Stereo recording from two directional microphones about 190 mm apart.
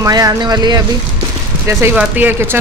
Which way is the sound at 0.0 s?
20° right (ahead or behind).